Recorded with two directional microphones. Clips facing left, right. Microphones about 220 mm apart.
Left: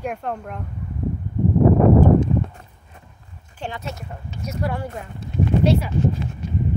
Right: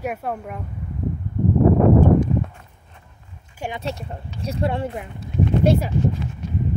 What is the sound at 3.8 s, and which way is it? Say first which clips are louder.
Speech: right 4 dB; 30° right (ahead or behind).